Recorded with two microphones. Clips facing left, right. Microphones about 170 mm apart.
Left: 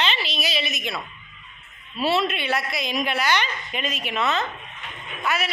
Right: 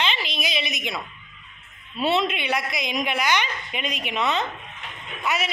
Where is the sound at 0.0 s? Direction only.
10° right (ahead or behind).